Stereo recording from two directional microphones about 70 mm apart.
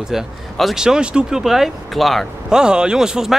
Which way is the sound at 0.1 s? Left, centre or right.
Centre.